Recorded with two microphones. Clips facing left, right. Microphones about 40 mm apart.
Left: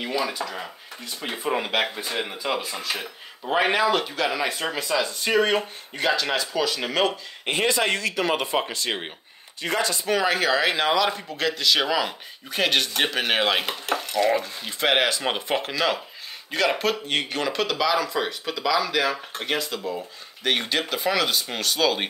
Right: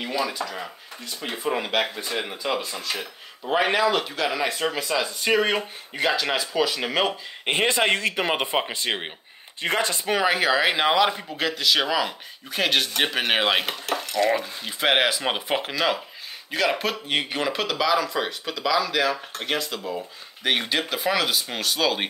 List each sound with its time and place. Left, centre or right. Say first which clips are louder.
0.0 s speech: even; centre
7.4 s speech: right 1 dB; right
9.6 s speech: right 1 dB; right
10.1 s speech: right 1 dB; centre
13.8 s dishes: left 2 dB; centre
14.4 s speech: even; centre